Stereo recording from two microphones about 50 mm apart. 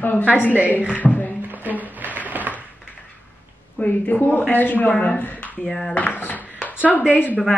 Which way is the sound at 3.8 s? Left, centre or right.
Left.